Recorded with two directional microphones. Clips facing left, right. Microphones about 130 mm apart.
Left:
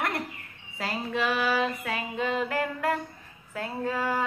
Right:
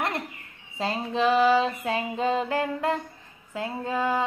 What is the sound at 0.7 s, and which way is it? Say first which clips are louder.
Female singing: right 3 dB; 25° right (ahead or behind).